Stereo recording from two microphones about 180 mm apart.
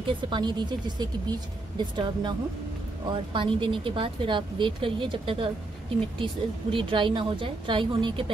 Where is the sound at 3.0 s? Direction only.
25° right (ahead or behind).